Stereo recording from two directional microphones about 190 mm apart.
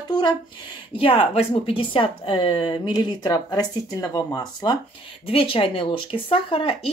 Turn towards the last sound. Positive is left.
turn(degrees=30)  # may be behind; listen again after turning